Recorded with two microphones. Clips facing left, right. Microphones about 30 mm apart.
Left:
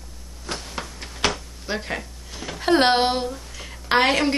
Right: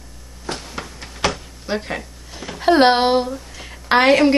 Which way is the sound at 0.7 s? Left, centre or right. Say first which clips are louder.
Right 1 dB; centre.